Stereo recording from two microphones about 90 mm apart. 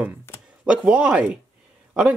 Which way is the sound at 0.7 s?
10° right (ahead or behind).